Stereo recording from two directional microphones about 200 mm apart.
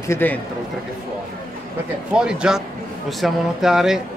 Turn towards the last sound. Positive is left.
turn(degrees=0)  # may be behind; listen again after turning